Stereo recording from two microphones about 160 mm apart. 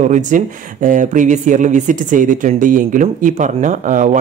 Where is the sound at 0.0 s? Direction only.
50° right (ahead or behind).